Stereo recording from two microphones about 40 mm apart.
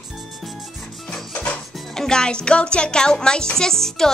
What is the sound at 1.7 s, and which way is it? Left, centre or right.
A child's voice, centre.